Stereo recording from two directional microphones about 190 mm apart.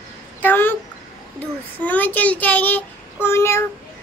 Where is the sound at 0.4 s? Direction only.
10° left (ahead or behind).